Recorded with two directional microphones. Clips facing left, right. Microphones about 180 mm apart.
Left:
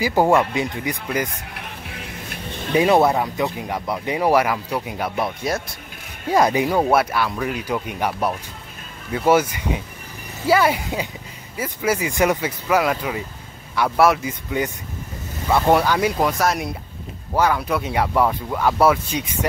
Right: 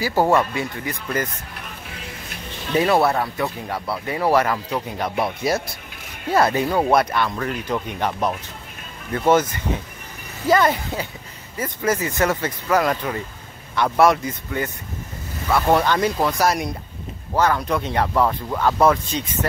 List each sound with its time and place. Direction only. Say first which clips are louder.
0.0 s speech: left 1 dB; 15° left (ahead or behind)
2.7 s speech: left 2 dB; 15° left (ahead or behind)
5.1 s speech: right 3 dB; 5° right (ahead or behind)
6.2 s speech: left 1 dB; 15° left (ahead or behind)
14.5 s speech: left 5 dB; 15° left (ahead or behind)